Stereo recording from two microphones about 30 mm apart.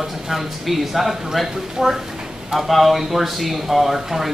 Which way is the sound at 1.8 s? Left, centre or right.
Centre.